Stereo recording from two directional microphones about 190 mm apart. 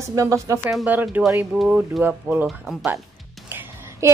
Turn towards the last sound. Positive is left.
turn(degrees=-10)  # may be behind; listen again after turning